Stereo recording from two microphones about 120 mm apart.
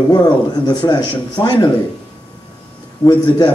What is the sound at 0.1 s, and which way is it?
Speech, 35° left (ahead or behind).